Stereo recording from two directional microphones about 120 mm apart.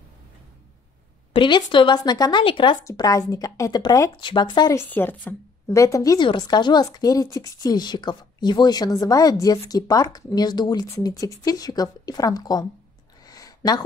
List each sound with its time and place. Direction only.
1.3 s a woman's voice: 45° left (ahead or behind)
2.8 s a woman's voice: 30° left (ahead or behind)
4.7 s a woman's voice: 15° left (ahead or behind)
6.1 s a woman's voice: 40° left (ahead or behind)
13.2 s a sound: 30° left (ahead or behind)